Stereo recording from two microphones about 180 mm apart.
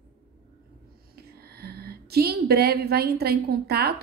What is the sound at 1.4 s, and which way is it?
A woman's voice, 60° right (ahead or behind).